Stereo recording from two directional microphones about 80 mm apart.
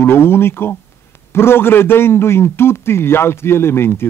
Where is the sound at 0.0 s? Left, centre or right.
Left.